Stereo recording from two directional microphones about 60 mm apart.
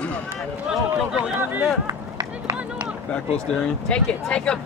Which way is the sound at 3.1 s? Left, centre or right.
Centre.